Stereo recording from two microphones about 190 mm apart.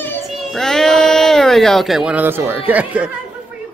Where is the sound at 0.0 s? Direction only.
Centre (ahead or behind).